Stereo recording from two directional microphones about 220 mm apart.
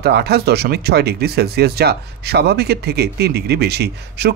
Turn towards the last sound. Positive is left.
turn(degrees=-50)  # may be behind; listen again after turning